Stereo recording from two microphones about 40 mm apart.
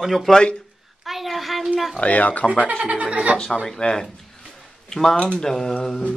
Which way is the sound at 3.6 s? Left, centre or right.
Centre.